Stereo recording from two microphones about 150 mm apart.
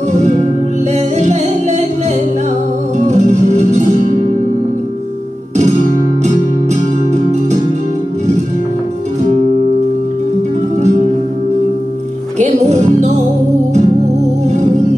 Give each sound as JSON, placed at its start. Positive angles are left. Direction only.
{"t": 0.9, "sound": "music", "side_deg": -50}
{"t": 3.1, "sound": "music", "side_deg": -50}
{"t": 12.4, "sound": "music", "side_deg": -50}